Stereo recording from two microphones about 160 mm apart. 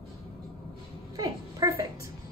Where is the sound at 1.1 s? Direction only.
20° right (ahead or behind).